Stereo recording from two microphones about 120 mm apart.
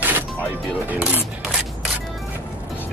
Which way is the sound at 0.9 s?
10° right (ahead or behind).